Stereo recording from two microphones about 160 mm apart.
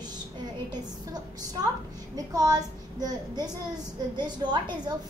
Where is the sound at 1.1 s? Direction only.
25° right (ahead or behind).